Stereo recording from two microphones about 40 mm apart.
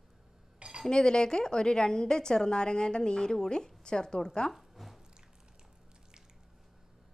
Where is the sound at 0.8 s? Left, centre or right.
Left.